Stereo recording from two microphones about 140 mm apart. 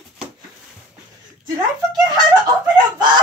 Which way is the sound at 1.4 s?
30° right (ahead or behind).